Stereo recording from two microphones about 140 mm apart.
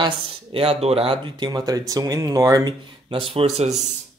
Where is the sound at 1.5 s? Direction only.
25° right (ahead or behind); by 3.7 s 50° right (ahead or behind).